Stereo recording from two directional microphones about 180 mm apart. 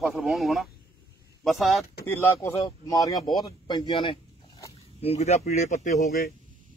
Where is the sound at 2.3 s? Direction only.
15° left (ahead or behind); by 6.1 s 40° left (ahead or behind).